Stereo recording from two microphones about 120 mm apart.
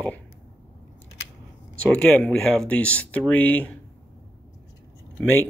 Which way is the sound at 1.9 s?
10° left (ahead or behind).